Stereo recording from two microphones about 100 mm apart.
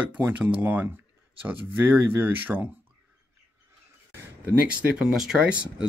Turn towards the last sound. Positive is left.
turn(degrees=-10)  # may be behind; listen again after turning